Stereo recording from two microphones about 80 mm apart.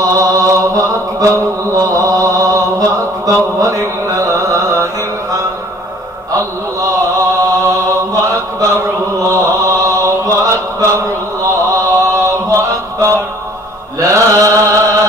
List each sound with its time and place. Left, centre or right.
0.0 s mantra: right
8.1 s chant: right
13.9 s mantra: right